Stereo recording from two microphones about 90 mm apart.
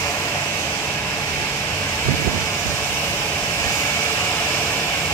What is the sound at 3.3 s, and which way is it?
Vehicle, 25° left (ahead or behind).